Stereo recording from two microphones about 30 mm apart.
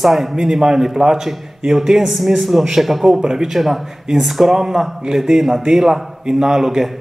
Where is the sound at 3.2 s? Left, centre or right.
Centre.